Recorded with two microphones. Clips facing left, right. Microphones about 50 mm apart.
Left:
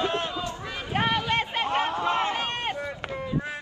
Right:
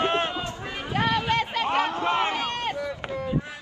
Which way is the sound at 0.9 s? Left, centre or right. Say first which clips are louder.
Right 1 dB; left.